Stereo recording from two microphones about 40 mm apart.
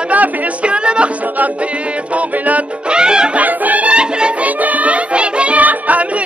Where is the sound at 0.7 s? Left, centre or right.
Right.